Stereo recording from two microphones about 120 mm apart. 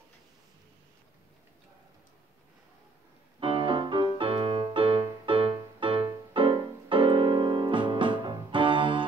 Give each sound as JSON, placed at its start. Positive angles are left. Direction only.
{"t": 3.3, "sound": "music", "side_deg": -45}